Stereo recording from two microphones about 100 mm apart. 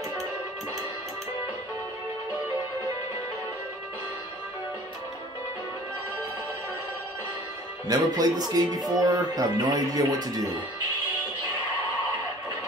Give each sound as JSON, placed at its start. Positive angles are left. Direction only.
{"t": 7.9, "sound": "speech", "side_deg": -40}